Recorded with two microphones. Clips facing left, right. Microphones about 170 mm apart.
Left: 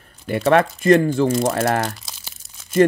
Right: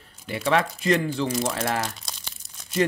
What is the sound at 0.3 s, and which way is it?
Speech, 55° left (ahead or behind).